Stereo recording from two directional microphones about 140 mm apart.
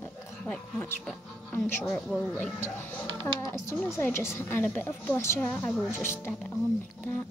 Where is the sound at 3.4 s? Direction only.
20° left (ahead or behind).